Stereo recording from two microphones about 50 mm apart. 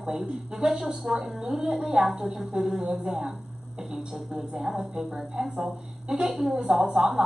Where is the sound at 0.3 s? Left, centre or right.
Centre.